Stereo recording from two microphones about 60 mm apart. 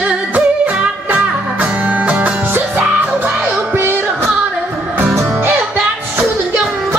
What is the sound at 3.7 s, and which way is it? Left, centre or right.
Music, right.